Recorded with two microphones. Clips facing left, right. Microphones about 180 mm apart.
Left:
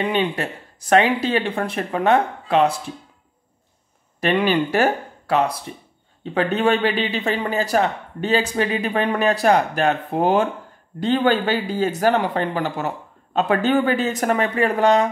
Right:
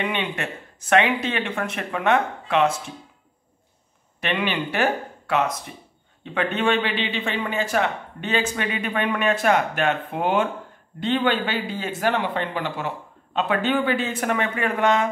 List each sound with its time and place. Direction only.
0.0 s a man's voice: 35° left (ahead or behind)
4.2 s a man's voice: 40° left (ahead or behind)